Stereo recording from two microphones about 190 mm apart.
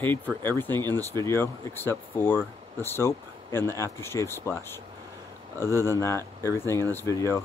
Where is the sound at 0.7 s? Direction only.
20° right (ahead or behind).